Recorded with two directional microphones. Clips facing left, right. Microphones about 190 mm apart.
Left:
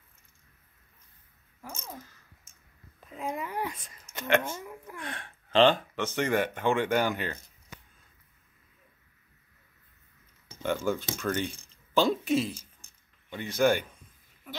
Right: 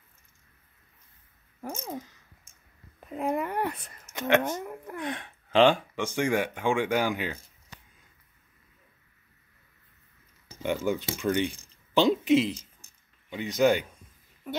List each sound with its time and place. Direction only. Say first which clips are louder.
1.6 s speech: right 7 dB; 50° right (ahead or behind)
3.1 s speech: right 6 dB; 60° right (ahead or behind)
5.0 s speech: right 7 dB; 15° right (ahead or behind)
10.9 s speech: right 2 dB; 15° right (ahead or behind)